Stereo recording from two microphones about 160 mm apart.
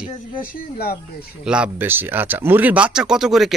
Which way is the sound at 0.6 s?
70° left (ahead or behind).